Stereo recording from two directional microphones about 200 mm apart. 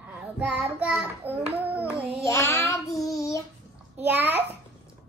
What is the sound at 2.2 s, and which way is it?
Child singing, 15° left (ahead or behind).